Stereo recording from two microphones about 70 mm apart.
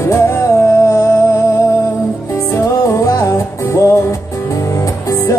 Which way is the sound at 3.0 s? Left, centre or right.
Left.